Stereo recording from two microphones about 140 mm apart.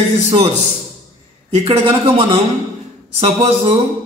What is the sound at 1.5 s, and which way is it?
Speech, 45° right (ahead or behind).